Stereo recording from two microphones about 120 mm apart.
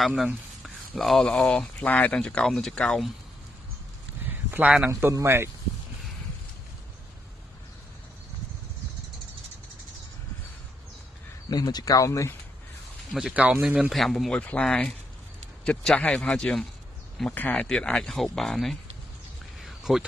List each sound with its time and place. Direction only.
0.0 s speech: 5° right (ahead or behind)
4.3 s speech: 15° right (ahead or behind)
11.5 s speech: 30° left (ahead or behind)
13.3 s speech: 10° right (ahead or behind)
19.6 s a sound: centre (ahead or behind)